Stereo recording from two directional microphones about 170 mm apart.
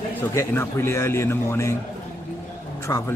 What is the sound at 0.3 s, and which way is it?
Speech, 15° left (ahead or behind).